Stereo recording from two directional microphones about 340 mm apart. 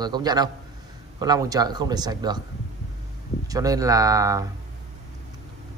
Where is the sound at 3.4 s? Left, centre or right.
Centre.